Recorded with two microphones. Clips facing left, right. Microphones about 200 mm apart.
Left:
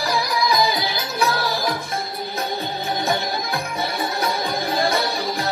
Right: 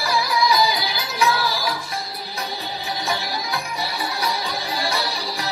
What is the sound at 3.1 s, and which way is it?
Music, 50° left (ahead or behind).